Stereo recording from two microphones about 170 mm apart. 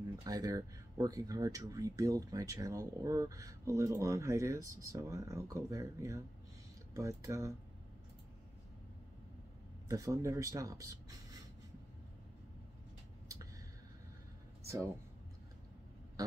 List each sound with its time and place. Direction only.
0.2 s speech: 20° right (ahead or behind)
9.8 s speech: 20° right (ahead or behind)